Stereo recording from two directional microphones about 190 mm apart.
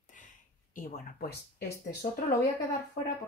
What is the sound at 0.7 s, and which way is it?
Speech, 45° left (ahead or behind).